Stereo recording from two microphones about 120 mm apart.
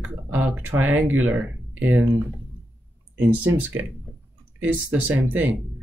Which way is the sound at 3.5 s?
20° right (ahead or behind).